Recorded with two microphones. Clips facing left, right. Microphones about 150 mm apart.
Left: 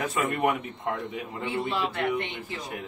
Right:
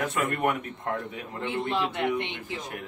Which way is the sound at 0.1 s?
Centre (ahead or behind).